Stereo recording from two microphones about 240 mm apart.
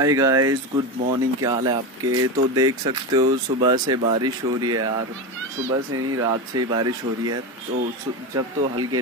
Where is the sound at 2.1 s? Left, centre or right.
Right.